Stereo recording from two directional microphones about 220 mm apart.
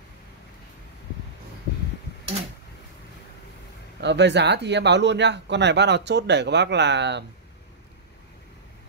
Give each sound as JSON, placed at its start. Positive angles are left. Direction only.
{"t": 4.0, "sound": "speech", "side_deg": -50}